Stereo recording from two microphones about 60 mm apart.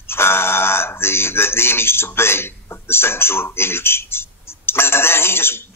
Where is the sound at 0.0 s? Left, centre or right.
Left.